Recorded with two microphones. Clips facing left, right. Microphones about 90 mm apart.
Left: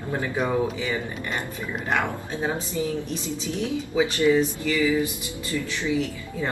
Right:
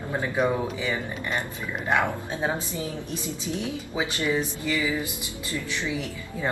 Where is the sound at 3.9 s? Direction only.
15° right (ahead or behind).